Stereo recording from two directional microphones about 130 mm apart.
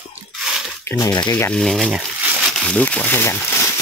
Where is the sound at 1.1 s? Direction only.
30° left (ahead or behind).